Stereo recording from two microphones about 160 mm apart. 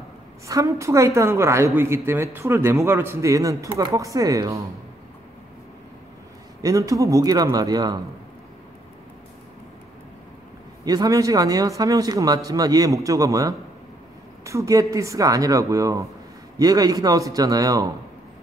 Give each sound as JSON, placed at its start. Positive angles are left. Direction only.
{"t": 0.5, "sound": "a woman's voice", "side_deg": -20}
{"t": 6.6, "sound": "speech", "side_deg": -20}
{"t": 10.9, "sound": "speech", "side_deg": -20}